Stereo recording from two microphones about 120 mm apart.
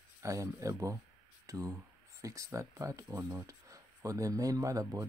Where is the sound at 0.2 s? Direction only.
25° right (ahead or behind).